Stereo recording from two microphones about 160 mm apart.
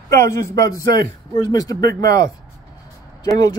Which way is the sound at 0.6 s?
20° left (ahead or behind).